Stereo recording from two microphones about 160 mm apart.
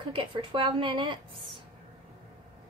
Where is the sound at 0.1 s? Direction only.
30° right (ahead or behind).